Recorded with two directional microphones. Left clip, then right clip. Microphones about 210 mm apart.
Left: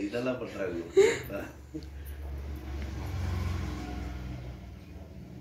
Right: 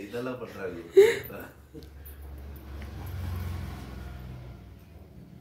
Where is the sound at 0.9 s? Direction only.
45° right (ahead or behind).